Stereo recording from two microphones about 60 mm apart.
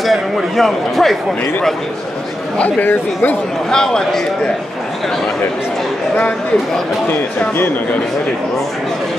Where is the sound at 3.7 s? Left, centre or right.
Centre.